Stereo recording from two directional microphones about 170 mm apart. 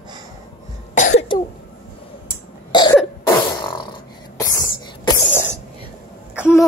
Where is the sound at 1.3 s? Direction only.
30° left (ahead or behind).